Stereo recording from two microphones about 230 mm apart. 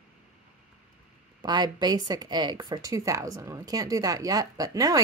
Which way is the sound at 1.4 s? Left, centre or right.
Centre.